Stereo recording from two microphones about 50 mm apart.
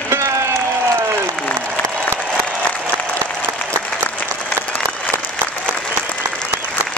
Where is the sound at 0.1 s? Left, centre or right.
Right.